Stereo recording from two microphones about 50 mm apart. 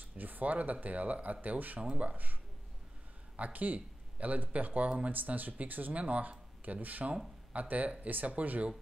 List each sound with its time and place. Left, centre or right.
0.0 s speech: right
3.3 s speech: right